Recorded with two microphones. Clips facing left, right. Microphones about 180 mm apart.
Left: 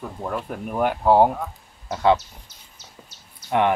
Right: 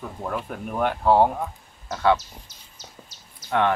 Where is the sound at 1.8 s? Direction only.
25° left (ahead or behind).